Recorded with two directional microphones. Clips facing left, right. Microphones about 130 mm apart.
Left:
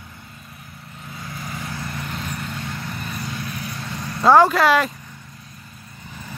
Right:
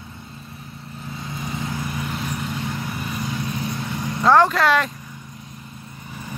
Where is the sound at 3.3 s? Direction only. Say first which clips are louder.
Right 4 dB; 25° right (ahead or behind).